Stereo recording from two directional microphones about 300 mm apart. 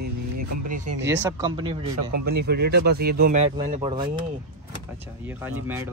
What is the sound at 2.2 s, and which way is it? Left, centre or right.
Speech, right.